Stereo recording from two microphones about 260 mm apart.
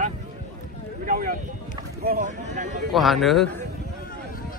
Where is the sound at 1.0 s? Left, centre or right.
Right.